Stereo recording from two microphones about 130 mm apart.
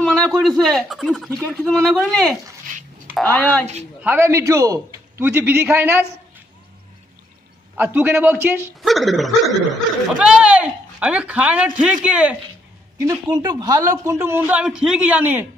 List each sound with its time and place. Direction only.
0.0 s a sound: 5° left (ahead or behind)
0.3 s speech: centre (ahead or behind)
4.0 s speech: 15° right (ahead or behind)
7.7 s speech: 15° right (ahead or behind)
8.8 s speech: centre (ahead or behind)
13.0 s speech: 30° right (ahead or behind); by 15.4 s 15° right (ahead or behind)